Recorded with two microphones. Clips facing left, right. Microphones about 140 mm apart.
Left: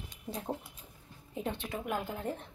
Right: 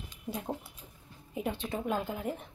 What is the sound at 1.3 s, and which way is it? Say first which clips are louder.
Speech: right 2 dB; 15° right (ahead or behind).